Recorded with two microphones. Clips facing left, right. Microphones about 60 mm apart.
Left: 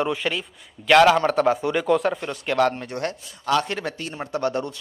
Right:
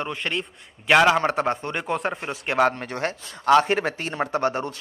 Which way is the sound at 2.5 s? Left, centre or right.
Right.